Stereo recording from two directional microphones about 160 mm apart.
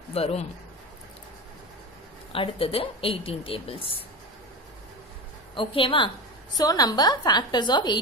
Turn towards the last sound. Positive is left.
turn(degrees=30)  # may be behind; listen again after turning